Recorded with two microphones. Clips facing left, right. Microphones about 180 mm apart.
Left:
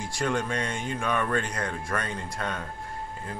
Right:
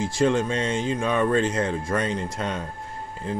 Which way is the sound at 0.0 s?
25° right (ahead or behind).